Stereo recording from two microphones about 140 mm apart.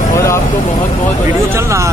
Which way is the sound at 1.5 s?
20° right (ahead or behind).